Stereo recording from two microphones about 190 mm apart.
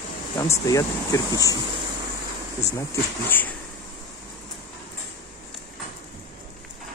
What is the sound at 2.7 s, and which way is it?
Speech, 15° left (ahead or behind).